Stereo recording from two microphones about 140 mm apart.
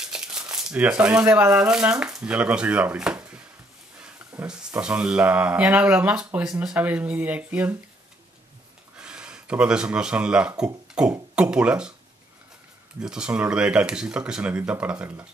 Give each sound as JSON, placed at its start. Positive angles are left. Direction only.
{"t": 0.0, "sound": "crumpling", "side_deg": -5}
{"t": 1.3, "sound": "speech", "side_deg": -5}
{"t": 4.5, "sound": "speech", "side_deg": -5}
{"t": 8.9, "sound": "speech", "side_deg": -5}
{"t": 13.0, "sound": "speech", "side_deg": -5}